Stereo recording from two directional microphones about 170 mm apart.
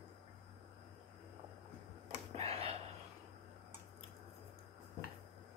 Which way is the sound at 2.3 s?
35° right (ahead or behind).